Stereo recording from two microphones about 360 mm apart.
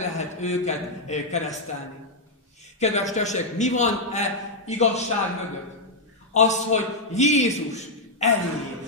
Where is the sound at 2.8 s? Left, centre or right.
Centre.